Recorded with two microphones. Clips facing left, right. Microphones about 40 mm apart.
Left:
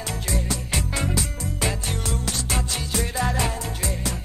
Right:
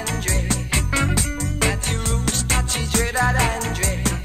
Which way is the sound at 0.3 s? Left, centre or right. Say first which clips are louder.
Right 2 dB; right.